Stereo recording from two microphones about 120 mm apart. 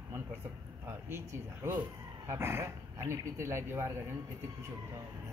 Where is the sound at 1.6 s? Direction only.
20° right (ahead or behind).